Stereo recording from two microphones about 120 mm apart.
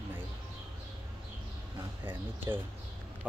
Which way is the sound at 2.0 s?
20° right (ahead or behind).